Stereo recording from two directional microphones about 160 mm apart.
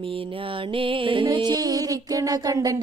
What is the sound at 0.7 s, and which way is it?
Music, 35° right (ahead or behind).